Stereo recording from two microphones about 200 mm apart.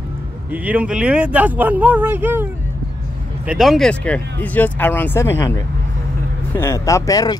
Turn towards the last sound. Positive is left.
turn(degrees=20)  # may be behind; listen again after turning